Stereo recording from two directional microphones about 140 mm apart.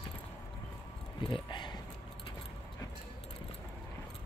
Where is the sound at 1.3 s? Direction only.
35° left (ahead or behind).